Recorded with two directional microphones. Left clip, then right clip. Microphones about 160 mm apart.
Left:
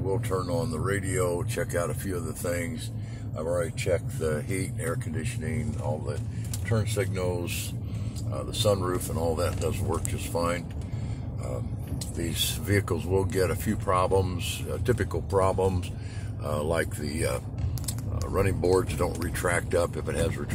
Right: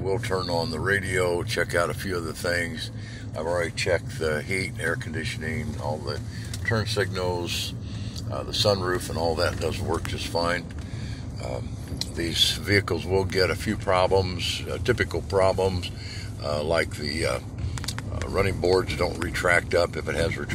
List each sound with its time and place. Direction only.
0.4 s speech: 20° left (ahead or behind)
3.9 s speech: 20° left (ahead or behind)
6.7 s speech: 25° left (ahead or behind)
12.2 s speech: 20° left (ahead or behind)